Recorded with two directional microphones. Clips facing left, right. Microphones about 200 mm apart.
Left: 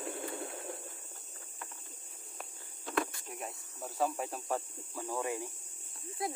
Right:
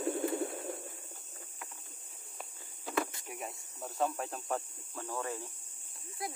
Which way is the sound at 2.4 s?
5° right (ahead or behind).